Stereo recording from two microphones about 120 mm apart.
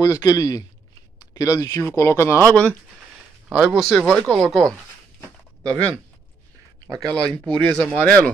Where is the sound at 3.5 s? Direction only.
5° right (ahead or behind).